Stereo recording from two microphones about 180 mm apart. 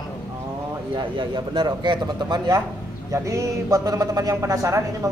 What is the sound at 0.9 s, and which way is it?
A man's voice, 25° right (ahead or behind).